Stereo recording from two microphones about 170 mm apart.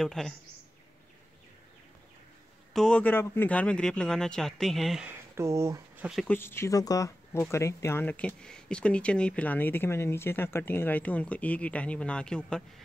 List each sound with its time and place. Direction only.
0.0 s speech: centre (ahead or behind)
2.7 s speech: 5° left (ahead or behind)
5.3 s speech: 15° right (ahead or behind)
6.0 s speech: centre (ahead or behind)
6.3 s speech: 15° left (ahead or behind)